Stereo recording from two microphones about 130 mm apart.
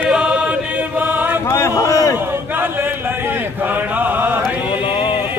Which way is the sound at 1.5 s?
25° left (ahead or behind).